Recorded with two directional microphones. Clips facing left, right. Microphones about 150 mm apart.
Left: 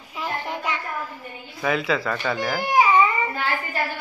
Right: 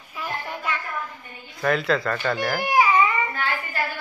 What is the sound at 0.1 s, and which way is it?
Child singing, 20° left (ahead or behind).